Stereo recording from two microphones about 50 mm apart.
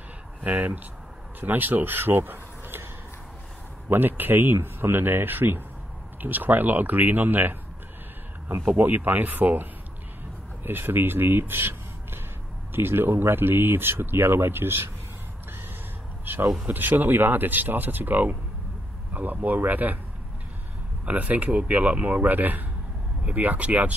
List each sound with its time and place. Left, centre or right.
0.4 s speech: right
3.9 s speech: right
8.6 s speech: right
10.6 s speech: right
16.3 s a sound: right
16.6 s speech: right
21.0 s speech: right